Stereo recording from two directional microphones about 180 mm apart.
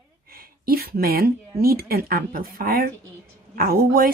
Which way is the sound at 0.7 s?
55° right (ahead or behind).